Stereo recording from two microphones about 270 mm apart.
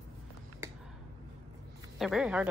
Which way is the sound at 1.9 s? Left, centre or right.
Centre.